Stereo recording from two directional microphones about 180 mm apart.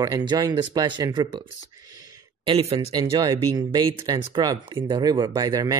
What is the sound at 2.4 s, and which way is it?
Speech, 30° right (ahead or behind).